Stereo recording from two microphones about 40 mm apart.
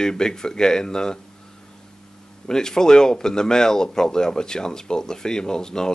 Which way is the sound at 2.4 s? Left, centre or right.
Centre.